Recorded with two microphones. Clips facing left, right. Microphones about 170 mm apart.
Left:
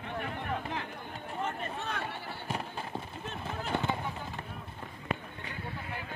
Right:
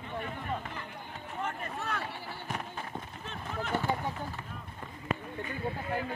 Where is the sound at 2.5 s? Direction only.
30° left (ahead or behind).